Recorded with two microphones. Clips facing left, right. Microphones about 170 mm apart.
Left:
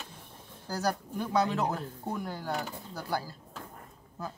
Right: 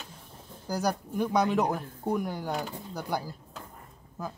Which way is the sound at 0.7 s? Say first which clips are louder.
Right 2 dB; 15° right (ahead or behind).